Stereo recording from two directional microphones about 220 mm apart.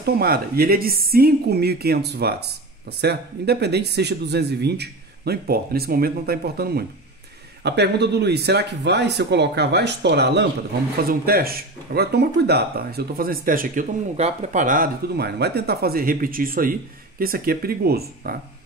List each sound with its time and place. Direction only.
0.0 s speech: 45° right (ahead or behind)